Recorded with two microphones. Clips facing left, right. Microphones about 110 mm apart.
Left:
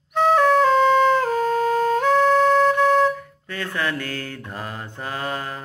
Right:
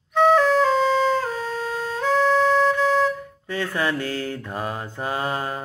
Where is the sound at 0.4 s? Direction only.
55° left (ahead or behind).